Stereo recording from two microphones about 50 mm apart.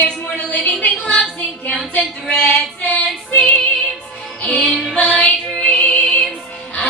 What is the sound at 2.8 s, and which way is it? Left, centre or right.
Female singing, left.